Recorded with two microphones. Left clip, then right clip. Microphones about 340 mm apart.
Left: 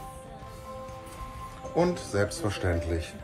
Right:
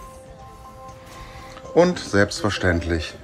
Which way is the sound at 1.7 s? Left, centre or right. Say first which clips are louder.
Right 9 dB; right.